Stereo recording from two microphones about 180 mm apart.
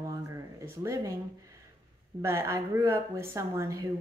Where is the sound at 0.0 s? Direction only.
15° right (ahead or behind).